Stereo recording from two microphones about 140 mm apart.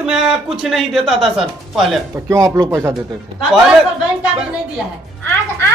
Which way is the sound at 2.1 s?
20° right (ahead or behind).